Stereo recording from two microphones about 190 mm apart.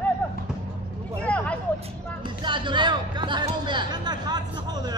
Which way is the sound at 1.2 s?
5° left (ahead or behind).